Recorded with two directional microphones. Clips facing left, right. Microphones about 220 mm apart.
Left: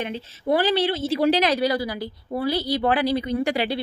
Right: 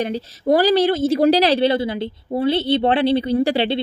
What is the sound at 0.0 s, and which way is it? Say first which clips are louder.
A woman's voice: right 6 dB; 40° right (ahead or behind).